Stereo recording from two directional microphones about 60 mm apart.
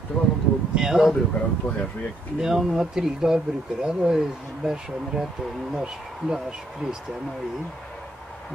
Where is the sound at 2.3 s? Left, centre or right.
Centre.